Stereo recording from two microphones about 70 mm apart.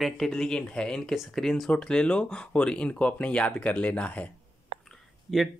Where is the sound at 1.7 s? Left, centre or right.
Centre.